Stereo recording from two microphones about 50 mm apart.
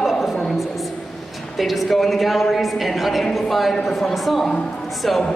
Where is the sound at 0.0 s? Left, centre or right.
Centre.